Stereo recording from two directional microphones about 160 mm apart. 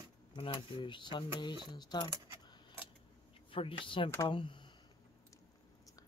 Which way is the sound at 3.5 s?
35° left (ahead or behind).